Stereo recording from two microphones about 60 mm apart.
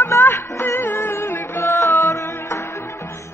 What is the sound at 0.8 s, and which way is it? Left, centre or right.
Music, left.